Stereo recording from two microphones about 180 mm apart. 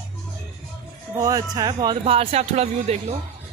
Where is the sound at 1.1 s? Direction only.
20° right (ahead or behind); by 3.2 s 35° right (ahead or behind).